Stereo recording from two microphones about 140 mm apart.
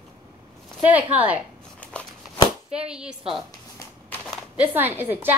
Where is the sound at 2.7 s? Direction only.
5° right (ahead or behind).